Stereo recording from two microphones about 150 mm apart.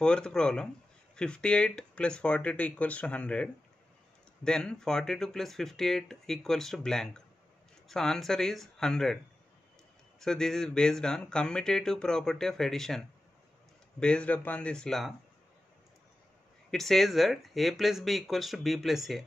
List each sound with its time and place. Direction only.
0.0 s speech: 5° left (ahead or behind)
4.5 s speech: 5° left (ahead or behind)
10.2 s speech: 5° left (ahead or behind)
16.7 s speech: centre (ahead or behind)